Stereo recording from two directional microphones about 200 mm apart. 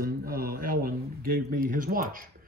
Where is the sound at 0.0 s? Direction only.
45° right (ahead or behind).